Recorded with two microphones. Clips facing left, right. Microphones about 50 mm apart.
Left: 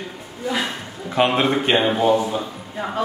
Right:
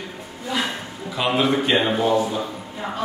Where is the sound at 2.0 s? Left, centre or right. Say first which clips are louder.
Left 2 dB; centre.